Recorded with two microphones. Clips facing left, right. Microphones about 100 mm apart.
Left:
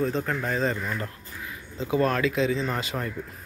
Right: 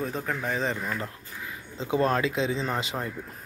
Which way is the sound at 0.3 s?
10° right (ahead or behind).